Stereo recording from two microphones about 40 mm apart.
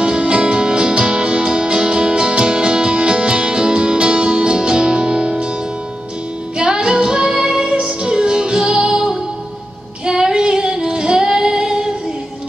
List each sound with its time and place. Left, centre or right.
0.0 s music: right
6.6 s music: right
10.0 s female singing: centre